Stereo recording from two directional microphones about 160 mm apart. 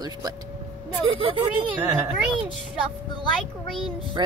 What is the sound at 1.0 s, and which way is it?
Speech, 35° right (ahead or behind).